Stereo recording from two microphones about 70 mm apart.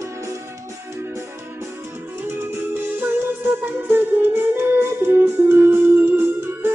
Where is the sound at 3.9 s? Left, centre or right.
Right.